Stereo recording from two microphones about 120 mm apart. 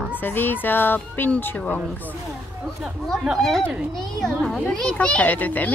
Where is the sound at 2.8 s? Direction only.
5° right (ahead or behind).